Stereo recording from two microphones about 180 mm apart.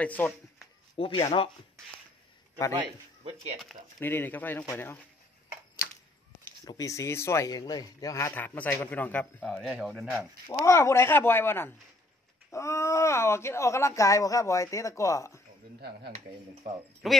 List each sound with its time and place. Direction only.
0.0 s speech: 10° left (ahead or behind)
0.9 s speech: 30° left (ahead or behind)
2.8 s a man's voice: 35° right (ahead or behind)
4.0 s speech: 10° left (ahead or behind)
6.6 s speech: 20° left (ahead or behind); by 10.2 s centre (ahead or behind)
10.6 s speech: 15° left (ahead or behind)
17.0 s speech: centre (ahead or behind)